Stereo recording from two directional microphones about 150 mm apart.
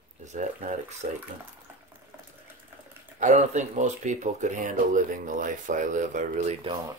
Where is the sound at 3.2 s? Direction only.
55° right (ahead or behind).